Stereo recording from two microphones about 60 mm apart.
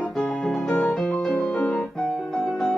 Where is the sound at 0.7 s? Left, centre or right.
Left.